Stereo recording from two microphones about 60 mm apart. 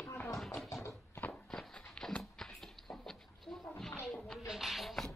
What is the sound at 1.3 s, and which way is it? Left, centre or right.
Walk, centre.